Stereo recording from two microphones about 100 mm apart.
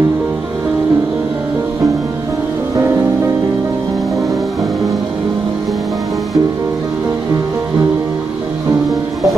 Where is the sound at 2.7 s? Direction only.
30° right (ahead or behind).